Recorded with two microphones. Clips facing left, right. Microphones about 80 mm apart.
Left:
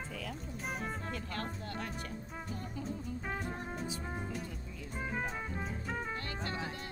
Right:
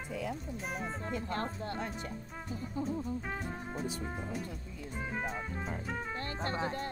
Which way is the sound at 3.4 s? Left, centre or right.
Centre.